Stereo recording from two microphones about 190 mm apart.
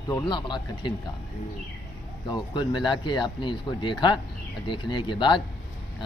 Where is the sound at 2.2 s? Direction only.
25° left (ahead or behind).